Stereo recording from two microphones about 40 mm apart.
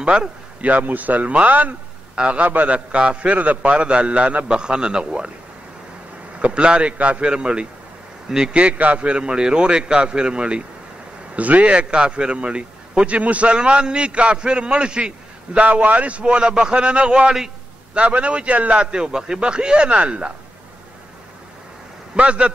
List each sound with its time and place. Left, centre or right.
0.6 s speech: right
2.1 s a man's voice: right
2.4 s speech: right
2.9 s a man's voice: right
6.4 s a man's voice: right
8.7 s a man's voice: right
11.3 s a man's voice: right
15.6 s a man's voice: right
16.3 s a man's voice: right
22.1 s a man's voice: right